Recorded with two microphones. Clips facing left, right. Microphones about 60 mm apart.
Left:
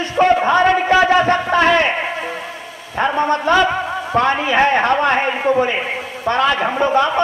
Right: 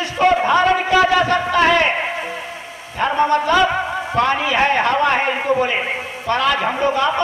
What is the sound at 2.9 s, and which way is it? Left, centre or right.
A man's voice, left.